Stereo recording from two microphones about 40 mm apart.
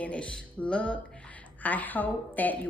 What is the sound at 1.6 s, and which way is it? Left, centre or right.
A woman's voice, left.